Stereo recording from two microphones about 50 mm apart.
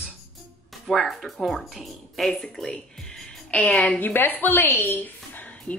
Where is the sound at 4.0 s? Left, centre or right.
Left.